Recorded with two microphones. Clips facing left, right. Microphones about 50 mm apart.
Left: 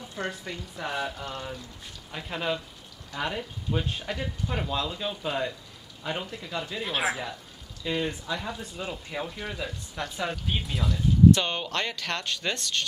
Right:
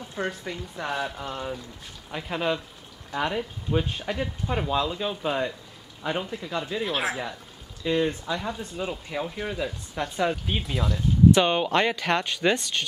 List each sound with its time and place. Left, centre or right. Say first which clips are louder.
0.2 s speech: right 3 dB; centre
11.3 s speech: right 8 dB; centre